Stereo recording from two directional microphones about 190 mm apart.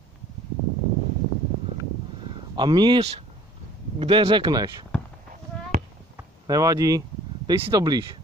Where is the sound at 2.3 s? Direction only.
25° right (ahead or behind).